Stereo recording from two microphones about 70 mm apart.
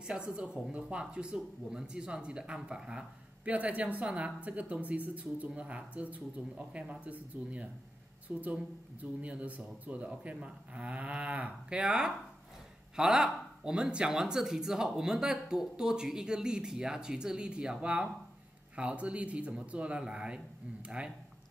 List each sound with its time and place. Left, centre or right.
0.0 s speech: centre